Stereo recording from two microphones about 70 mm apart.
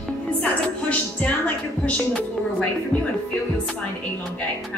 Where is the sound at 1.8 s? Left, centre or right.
Centre.